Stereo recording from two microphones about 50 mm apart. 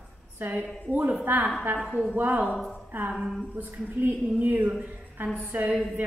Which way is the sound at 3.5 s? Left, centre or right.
Right.